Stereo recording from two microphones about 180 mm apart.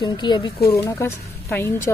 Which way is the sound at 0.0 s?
25° left (ahead or behind).